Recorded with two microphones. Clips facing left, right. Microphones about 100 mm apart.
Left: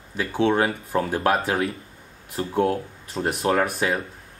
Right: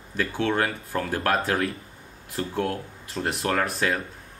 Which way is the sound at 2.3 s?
25° left (ahead or behind).